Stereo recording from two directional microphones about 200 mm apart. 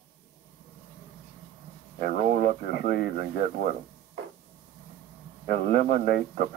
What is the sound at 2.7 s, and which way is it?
Speech, 50° left (ahead or behind).